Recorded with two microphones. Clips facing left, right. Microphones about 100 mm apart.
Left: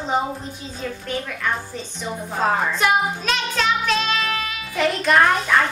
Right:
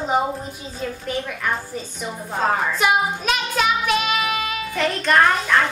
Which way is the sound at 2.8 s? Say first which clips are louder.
Right 2 dB; 5° right (ahead or behind).